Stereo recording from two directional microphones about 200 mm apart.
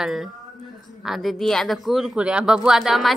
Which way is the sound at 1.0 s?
Centre (ahead or behind).